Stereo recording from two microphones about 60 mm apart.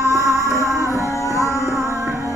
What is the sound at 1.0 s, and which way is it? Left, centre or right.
Music, left.